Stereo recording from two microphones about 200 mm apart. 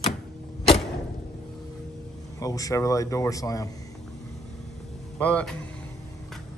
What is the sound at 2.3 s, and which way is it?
A man's voice, 15° left (ahead or behind).